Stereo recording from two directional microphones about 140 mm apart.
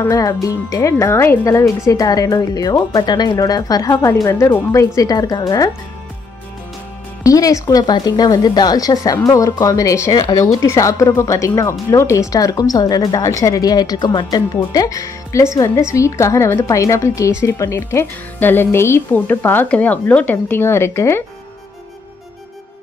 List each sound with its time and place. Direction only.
0.0 s speech: 25° left (ahead or behind)
7.2 s speech: 25° left (ahead or behind)